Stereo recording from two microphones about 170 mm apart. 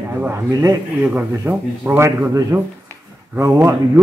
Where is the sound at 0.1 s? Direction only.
15° right (ahead or behind).